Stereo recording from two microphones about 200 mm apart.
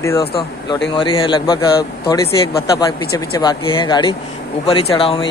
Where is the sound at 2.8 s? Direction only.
15° left (ahead or behind).